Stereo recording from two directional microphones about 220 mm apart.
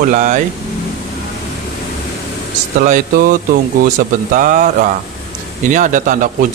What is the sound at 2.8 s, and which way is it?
Speech, 40° right (ahead or behind).